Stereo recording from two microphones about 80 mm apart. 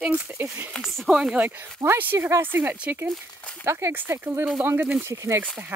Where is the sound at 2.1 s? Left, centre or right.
Right.